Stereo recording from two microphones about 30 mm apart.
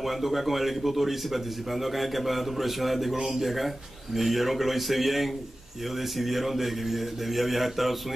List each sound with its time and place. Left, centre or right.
0.0 s a man's voice: centre